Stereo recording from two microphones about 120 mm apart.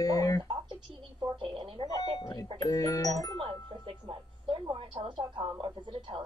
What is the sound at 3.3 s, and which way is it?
A woman's voice, 45° right (ahead or behind).